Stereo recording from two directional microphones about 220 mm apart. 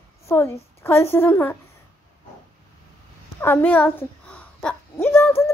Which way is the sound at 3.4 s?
10° left (ahead or behind).